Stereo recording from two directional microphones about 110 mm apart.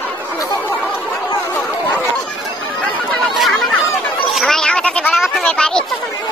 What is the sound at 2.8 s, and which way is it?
Chatter, 5° left (ahead or behind).